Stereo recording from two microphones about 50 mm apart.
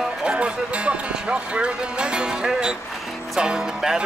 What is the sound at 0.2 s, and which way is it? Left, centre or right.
Speech, right.